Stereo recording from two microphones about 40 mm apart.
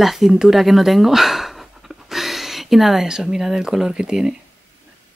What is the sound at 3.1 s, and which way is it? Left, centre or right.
Speech, centre.